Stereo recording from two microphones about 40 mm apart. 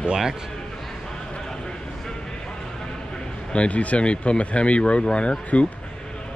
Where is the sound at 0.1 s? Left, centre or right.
Centre.